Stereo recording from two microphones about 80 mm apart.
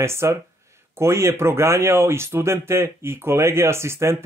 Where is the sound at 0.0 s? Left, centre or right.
Right.